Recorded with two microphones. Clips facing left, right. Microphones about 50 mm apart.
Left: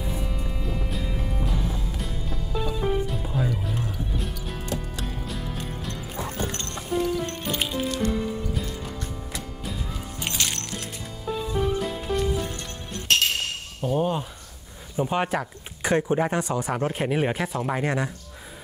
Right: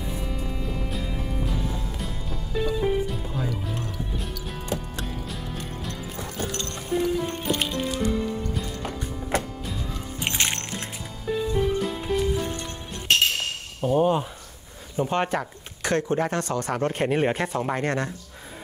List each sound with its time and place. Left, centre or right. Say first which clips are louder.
0.0 s music: even; centre
6.5 s music: right 1 dB; left
7.0 s music: right 1 dB; centre
7.5 s music: left 1 dB; centre
9.3 s music: right 13 dB; right
10.2 s music: right 3 dB; right
11.6 s music: right 1 dB; centre
13.7 s a sound: right 4 dB; centre
15.0 s speech: even; centre